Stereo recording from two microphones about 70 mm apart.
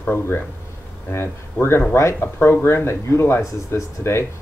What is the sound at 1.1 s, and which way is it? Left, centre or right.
Speech, left.